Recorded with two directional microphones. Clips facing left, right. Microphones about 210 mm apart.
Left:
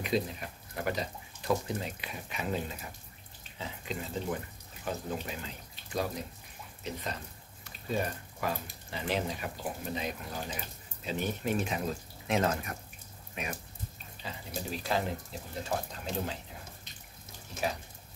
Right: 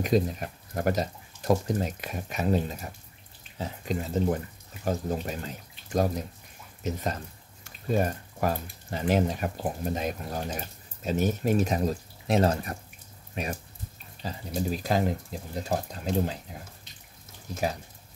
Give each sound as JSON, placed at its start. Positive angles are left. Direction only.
{"t": 0.0, "sound": "speech", "side_deg": -45}